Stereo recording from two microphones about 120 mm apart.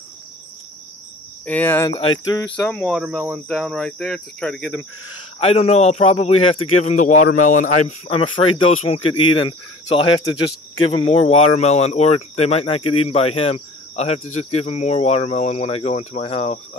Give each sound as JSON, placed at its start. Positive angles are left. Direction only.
{"t": 1.4, "sound": "cricket", "side_deg": 15}
{"t": 1.9, "sound": "speech", "side_deg": 45}
{"t": 2.5, "sound": "cricket", "side_deg": 10}
{"t": 2.9, "sound": "speech", "side_deg": -5}
{"t": 3.4, "sound": "cricket", "side_deg": 5}
{"t": 5.4, "sound": "speech", "side_deg": 55}
{"t": 7.0, "sound": "speech", "side_deg": 90}
{"t": 8.1, "sound": "speech", "side_deg": 50}